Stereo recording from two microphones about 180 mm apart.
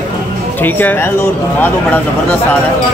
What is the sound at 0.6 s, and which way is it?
Speech, 10° left (ahead or behind).